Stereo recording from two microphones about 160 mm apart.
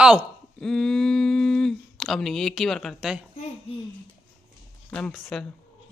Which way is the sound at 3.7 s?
35° left (ahead or behind).